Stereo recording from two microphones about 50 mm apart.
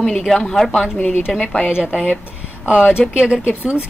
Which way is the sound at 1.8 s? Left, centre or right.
Centre.